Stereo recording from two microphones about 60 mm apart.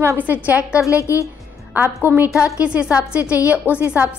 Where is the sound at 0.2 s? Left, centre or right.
Right.